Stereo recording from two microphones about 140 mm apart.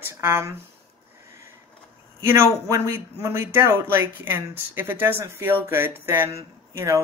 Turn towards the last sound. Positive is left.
turn(degrees=-20)  # may be behind; listen again after turning